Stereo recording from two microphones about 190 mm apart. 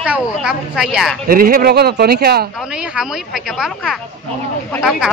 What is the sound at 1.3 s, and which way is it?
Speech, 50° right (ahead or behind).